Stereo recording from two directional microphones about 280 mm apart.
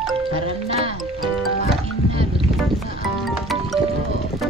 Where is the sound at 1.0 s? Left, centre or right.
Centre.